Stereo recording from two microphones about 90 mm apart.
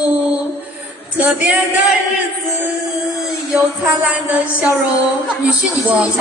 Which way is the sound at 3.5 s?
10° right (ahead or behind).